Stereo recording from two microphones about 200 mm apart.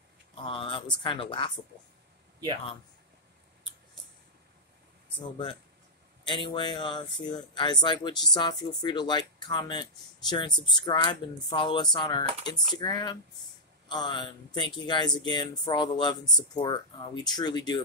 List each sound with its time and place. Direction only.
0.5 s speech: 25° left (ahead or behind)
6.2 s speech: 25° left (ahead or behind)